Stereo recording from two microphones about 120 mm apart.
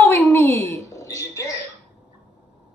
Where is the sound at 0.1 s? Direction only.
20° left (ahead or behind).